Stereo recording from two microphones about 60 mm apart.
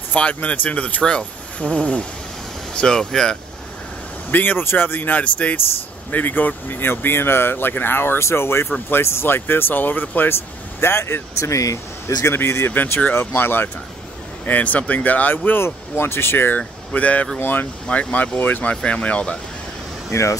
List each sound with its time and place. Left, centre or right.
0.1 s speech: left
4.3 s speech: left
5.1 s speech: left
10.8 s speech: left
12.4 s speech: left
14.4 s speech: left
15.6 s speech: left
20.1 s speech: left